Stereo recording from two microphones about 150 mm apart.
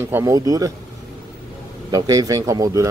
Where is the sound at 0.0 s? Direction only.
20° right (ahead or behind).